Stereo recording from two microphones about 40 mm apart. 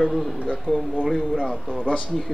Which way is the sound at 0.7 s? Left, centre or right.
Centre.